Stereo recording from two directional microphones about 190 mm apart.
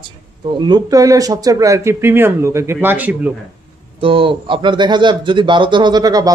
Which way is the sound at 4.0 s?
30° right (ahead or behind).